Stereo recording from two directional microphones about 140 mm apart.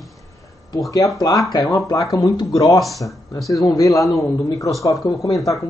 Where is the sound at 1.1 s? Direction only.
25° left (ahead or behind).